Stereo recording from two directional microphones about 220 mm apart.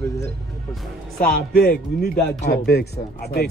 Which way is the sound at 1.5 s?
45° left (ahead or behind).